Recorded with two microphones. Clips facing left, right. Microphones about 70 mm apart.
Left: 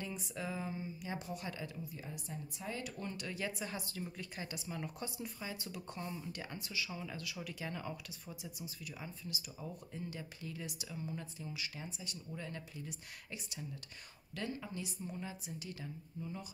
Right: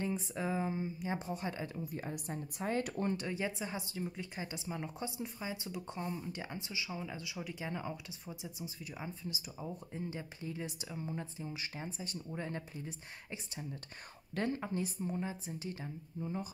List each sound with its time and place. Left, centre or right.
0.0 s speech: right
1.9 s a woman's voice: right
3.3 s a woman's voice: right